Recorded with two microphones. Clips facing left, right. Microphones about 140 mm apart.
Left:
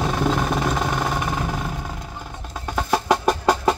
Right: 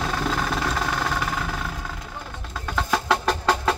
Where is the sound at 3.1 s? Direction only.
20° left (ahead or behind).